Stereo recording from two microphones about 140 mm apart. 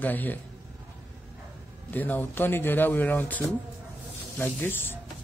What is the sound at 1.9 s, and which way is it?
Speech, 15° left (ahead or behind).